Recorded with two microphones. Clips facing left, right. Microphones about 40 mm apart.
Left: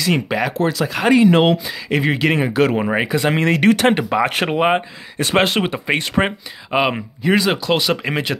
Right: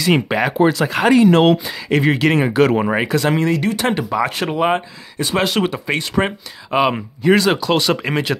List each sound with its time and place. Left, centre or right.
0.1 s speech: centre
1.0 s speech: centre
3.3 s speech: left
3.8 s speech: left
4.5 s speech: left
5.2 s speech: left
5.5 s speech: left
6.7 s speech: centre